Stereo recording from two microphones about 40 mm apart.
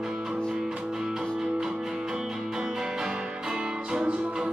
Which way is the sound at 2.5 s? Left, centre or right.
Centre.